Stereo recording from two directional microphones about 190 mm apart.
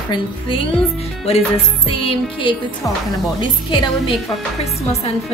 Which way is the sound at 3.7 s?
25° left (ahead or behind).